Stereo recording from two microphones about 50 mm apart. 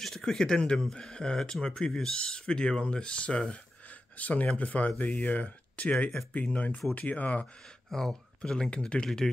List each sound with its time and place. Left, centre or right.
0.0 s speech: centre; by 7.4 s left
7.9 s speech: centre